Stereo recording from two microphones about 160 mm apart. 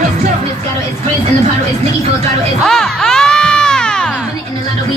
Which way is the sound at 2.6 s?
5° left (ahead or behind).